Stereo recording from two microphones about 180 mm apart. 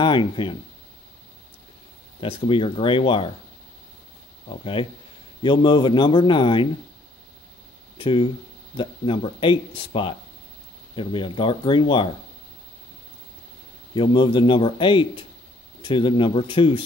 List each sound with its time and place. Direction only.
0.0 s speech: 25° left (ahead or behind)
2.1 s speech: 30° left (ahead or behind)
4.5 s speech: 30° left (ahead or behind)
8.0 s speech: 25° left (ahead or behind)
13.9 s speech: 25° left (ahead or behind)